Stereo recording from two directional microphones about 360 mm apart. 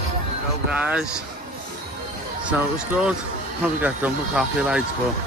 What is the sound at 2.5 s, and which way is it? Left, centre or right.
Speech, centre.